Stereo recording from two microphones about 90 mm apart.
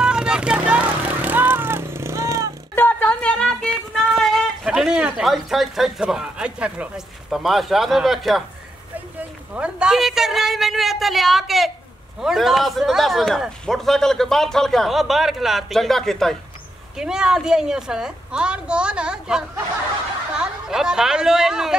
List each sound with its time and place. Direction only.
0.0 s vehicle: 10° right (ahead or behind); by 2.5 s 35° right (ahead or behind)
2.7 s a sound: 20° left (ahead or behind); by 4.5 s 5° left (ahead or behind)
4.6 s a man's voice: 10° right (ahead or behind)
9.5 s a man's voice: 10° right (ahead or behind); by 16.3 s 5° left (ahead or behind)
16.9 s a woman's voice: 5° right (ahead or behind)